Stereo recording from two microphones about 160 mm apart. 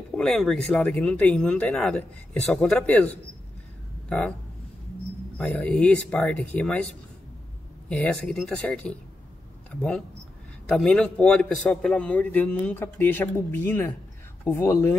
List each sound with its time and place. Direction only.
0.1 s speech: 5° left (ahead or behind)
5.4 s a man's voice: 10° left (ahead or behind)
7.9 s a man's voice: 5° left (ahead or behind)